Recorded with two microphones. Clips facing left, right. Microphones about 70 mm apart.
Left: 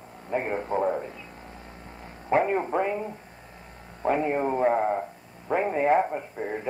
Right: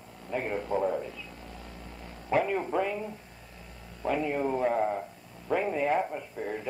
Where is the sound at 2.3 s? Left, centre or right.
Left.